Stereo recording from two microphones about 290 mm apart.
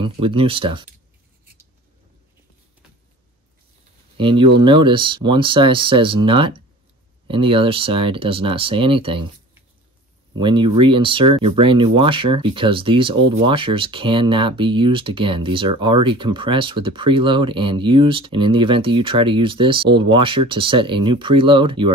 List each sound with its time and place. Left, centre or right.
0.0 s speech: centre
4.2 s speech: centre